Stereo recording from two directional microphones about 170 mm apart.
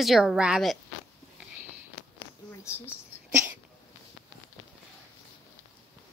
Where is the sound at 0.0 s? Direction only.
Centre (ahead or behind).